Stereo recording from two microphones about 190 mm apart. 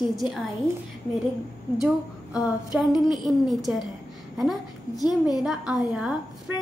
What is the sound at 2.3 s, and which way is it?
A woman's voice, 5° right (ahead or behind).